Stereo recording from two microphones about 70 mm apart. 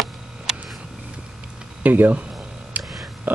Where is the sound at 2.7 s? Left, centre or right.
Right.